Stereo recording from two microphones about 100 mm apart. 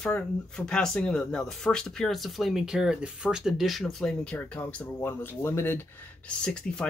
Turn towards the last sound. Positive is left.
turn(degrees=10)  # may be behind; listen again after turning